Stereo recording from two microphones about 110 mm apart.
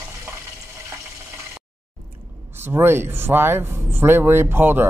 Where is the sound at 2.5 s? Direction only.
20° right (ahead or behind).